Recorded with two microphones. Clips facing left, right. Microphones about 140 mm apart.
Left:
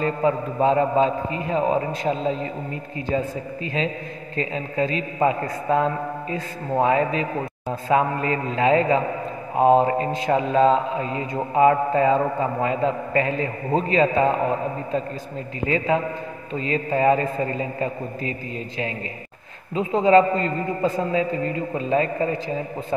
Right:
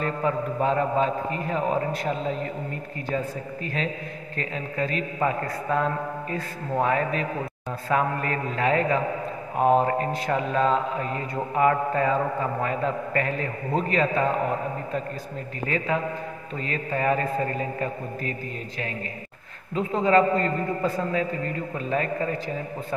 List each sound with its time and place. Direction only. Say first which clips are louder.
0.2 s mantra: left 4 dB; 25° left (ahead or behind)
4.4 s mantra: left 5 dB; 25° left (ahead or behind)
15.6 s mantra: left 5 dB; 20° left (ahead or behind)
19.8 s mantra: left 4 dB; 25° left (ahead or behind)